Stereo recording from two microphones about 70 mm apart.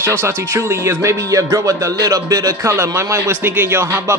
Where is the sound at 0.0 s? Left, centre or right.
Right.